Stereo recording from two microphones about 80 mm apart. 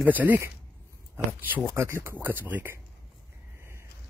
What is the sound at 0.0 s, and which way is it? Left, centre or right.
A man's voice, right.